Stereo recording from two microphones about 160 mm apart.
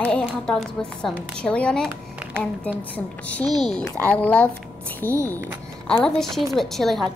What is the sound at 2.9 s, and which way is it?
A woman's voice, 10° left (ahead or behind).